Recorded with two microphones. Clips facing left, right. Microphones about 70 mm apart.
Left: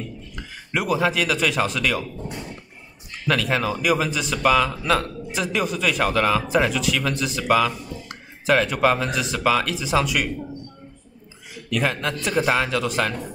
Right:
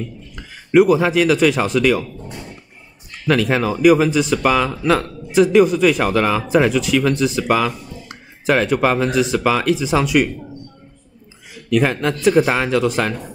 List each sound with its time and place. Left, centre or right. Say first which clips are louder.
0.7 s a man's voice: right 9 dB; right
3.3 s a man's voice: right 5 dB; right
11.8 s a man's voice: right 7 dB; right